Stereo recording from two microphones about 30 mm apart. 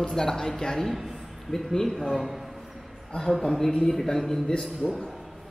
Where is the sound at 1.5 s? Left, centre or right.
Centre.